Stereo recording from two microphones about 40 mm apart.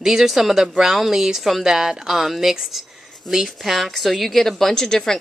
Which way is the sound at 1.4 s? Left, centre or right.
Centre.